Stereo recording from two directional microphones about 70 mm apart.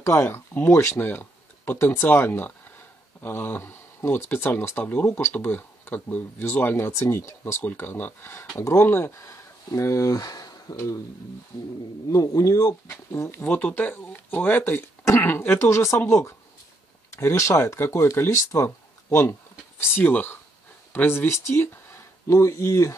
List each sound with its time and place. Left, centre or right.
0.0 s speech: left
12.1 s speech: left
13.5 s speech: left
19.0 s speech: left
22.3 s speech: left